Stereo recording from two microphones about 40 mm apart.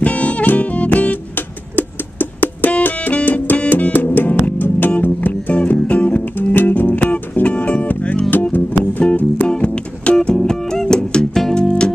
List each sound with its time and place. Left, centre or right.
0.0 s music: left
5.7 s music: left
6.7 s music: left
7.4 s music: left
8.3 s music: left
9.5 s music: left
10.1 s music: centre